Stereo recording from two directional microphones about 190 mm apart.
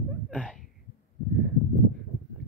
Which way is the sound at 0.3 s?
5° left (ahead or behind).